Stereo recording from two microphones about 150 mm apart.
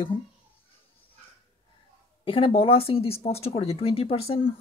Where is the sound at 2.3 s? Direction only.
35° left (ahead or behind).